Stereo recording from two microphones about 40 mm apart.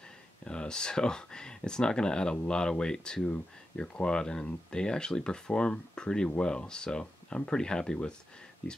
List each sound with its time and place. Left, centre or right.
0.5 s speech: left